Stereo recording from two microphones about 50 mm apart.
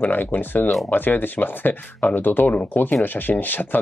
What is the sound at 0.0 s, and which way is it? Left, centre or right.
Speech, left.